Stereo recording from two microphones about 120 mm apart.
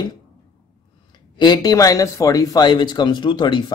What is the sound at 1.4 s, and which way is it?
A man's voice, 35° left (ahead or behind).